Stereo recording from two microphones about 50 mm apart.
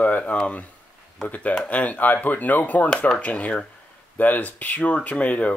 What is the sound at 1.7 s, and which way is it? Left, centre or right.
Speech, left.